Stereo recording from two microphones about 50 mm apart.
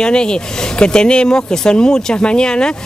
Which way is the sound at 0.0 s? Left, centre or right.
Centre.